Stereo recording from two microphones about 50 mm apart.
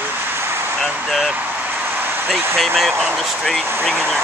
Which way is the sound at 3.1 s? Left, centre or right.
Centre.